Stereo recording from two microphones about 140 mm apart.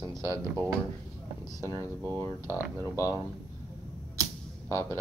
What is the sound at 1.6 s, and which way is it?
Speech, 20° left (ahead or behind).